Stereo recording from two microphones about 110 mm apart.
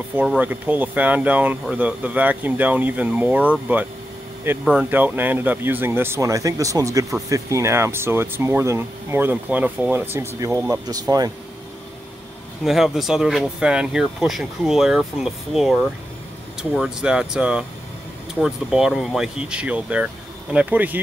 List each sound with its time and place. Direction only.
0.4 s speech: 15° right (ahead or behind)
4.6 s speech: 15° right (ahead or behind); by 11.3 s 35° right (ahead or behind)
12.6 s speech: 5° right (ahead or behind)
16.7 s speech: 5° right (ahead or behind)